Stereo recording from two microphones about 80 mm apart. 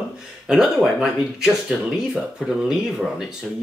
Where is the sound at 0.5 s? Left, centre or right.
Centre.